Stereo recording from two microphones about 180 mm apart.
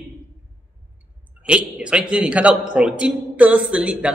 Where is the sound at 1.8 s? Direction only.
5° right (ahead or behind).